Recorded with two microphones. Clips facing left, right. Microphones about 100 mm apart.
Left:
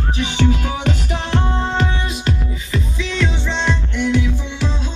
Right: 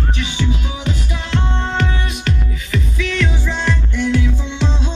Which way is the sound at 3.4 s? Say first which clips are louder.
Even; 20° left (ahead or behind).